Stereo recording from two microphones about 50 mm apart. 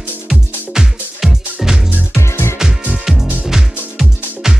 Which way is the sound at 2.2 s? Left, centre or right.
Left.